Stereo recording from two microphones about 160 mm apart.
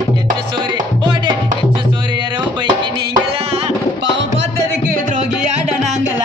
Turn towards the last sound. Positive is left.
turn(degrees=-90)